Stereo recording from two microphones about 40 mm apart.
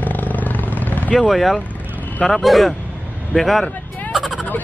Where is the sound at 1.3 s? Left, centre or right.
Centre.